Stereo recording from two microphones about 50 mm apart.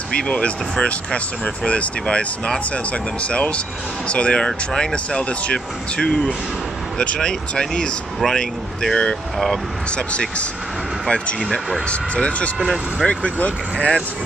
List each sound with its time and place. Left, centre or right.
0.1 s speech: centre
11.1 s speech: left